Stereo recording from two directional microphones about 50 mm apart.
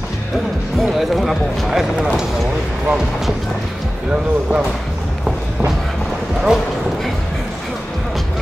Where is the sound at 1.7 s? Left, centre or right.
Centre.